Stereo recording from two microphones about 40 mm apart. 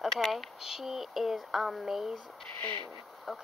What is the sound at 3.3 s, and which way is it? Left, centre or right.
Speech, centre.